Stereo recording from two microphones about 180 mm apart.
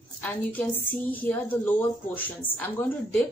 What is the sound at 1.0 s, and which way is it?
Speech, 10° left (ahead or behind).